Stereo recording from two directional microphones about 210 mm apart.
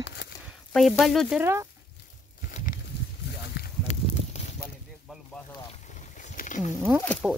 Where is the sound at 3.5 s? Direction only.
50° left (ahead or behind).